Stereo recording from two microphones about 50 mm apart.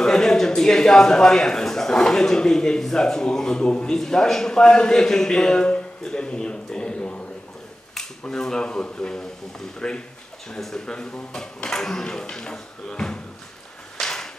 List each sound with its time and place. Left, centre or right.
0.0 s a man's voice: centre
8.3 s a man's voice: centre
13.9 s a sound: centre